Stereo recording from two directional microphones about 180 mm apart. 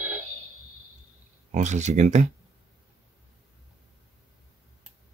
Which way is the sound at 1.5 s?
40° right (ahead or behind).